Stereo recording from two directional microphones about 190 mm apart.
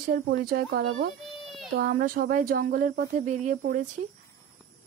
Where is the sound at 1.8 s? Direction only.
50° right (ahead or behind).